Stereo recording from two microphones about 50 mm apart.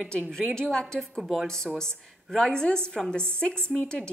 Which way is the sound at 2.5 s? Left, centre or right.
Centre.